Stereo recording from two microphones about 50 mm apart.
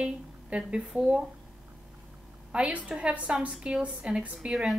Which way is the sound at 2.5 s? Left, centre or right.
Right.